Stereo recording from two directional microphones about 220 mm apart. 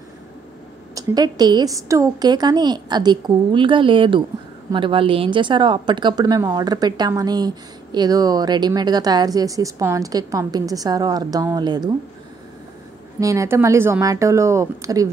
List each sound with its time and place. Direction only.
0.9 s a woman's voice: 20° right (ahead or behind)
13.2 s a woman's voice: 15° right (ahead or behind)